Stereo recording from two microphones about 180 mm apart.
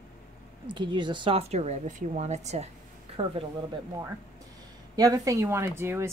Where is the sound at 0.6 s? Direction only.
25° right (ahead or behind).